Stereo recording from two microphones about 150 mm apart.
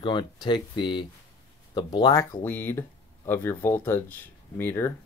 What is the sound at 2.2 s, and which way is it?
Speech, 15° left (ahead or behind).